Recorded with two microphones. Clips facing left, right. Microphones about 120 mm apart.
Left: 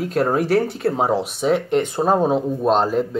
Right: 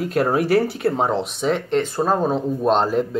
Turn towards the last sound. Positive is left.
turn(degrees=0)  # may be behind; listen again after turning